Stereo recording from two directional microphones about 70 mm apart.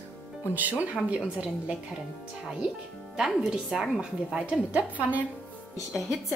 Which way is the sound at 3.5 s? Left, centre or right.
Centre.